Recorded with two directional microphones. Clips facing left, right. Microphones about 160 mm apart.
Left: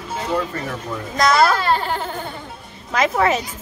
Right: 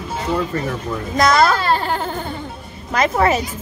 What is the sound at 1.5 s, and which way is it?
Baby cry, 35° right (ahead or behind).